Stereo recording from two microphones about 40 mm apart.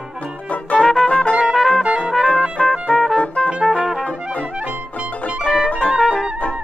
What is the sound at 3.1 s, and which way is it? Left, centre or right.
Music, centre.